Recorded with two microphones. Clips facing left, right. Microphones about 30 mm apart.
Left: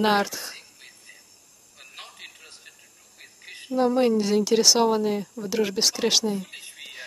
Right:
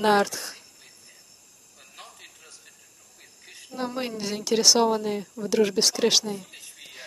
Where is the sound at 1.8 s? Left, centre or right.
Left.